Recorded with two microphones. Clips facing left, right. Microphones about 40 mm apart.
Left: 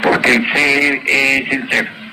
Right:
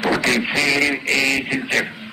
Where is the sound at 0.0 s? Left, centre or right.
Left.